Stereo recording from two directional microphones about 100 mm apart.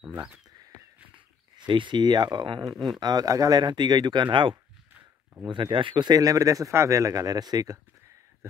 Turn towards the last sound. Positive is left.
turn(degrees=-40)  # may be behind; listen again after turning